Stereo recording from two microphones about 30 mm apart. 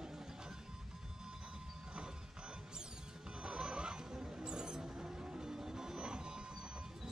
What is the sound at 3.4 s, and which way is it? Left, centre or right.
Mouse, right.